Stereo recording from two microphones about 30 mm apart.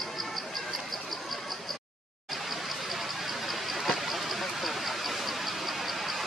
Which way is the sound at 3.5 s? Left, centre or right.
Centre.